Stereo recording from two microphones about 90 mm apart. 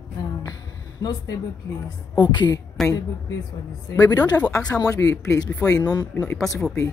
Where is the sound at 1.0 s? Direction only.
50° left (ahead or behind).